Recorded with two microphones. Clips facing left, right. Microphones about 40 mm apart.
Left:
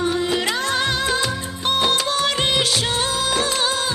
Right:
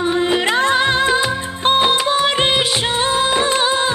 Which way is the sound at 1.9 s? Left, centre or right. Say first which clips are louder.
Right 4 dB; right.